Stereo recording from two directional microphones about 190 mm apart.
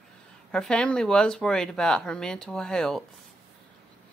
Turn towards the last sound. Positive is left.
turn(degrees=5)  # may be behind; listen again after turning